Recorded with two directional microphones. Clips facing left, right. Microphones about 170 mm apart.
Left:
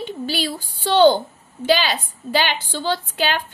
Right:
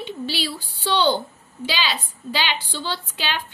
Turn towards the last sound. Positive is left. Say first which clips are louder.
# left 6 dB
turn(degrees=50)  # may be behind; listen again after turning